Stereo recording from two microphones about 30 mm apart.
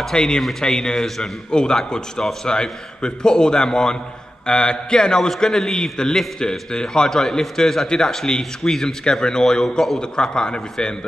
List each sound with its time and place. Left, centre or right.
0.1 s a man's voice: left